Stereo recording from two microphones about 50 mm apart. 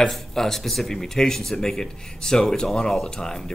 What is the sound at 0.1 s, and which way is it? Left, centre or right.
Speech, centre.